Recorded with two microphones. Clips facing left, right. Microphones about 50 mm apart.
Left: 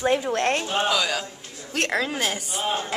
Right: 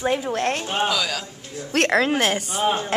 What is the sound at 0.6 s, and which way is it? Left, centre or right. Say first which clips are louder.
Speech: right 1 dB; centre.